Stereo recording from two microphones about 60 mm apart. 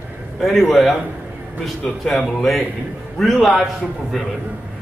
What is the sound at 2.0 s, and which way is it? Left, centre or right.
Speech, centre.